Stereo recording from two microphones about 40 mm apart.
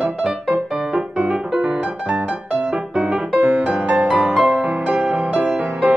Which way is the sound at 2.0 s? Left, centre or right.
Right.